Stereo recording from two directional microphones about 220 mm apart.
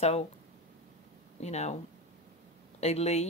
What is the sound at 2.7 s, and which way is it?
Speech, 30° left (ahead or behind).